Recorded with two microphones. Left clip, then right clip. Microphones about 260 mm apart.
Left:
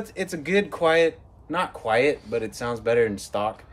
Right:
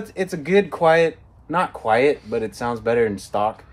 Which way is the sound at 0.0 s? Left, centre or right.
Centre.